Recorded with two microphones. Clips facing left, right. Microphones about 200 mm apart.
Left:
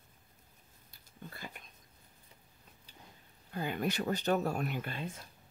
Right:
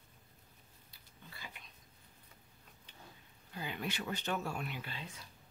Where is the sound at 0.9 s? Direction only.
50° left (ahead or behind).